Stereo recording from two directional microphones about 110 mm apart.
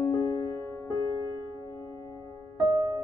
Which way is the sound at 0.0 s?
30° left (ahead or behind).